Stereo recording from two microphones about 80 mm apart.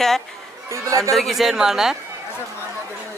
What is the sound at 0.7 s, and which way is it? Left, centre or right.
Speech, right.